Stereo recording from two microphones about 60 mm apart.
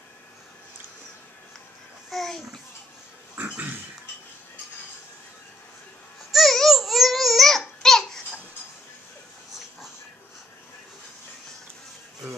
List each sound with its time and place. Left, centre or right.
2.0 s a sound: centre
3.3 s pig: right
6.3 s babbling: centre